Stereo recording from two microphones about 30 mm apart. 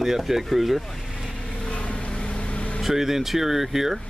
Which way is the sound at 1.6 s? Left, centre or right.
Left.